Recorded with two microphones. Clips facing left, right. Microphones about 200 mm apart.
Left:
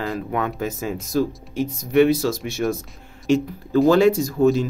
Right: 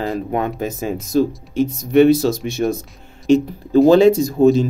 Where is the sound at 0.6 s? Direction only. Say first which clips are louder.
Right 3 dB; 20° right (ahead or behind).